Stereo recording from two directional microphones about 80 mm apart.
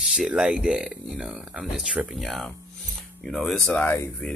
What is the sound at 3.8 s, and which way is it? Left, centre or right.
Speech, left.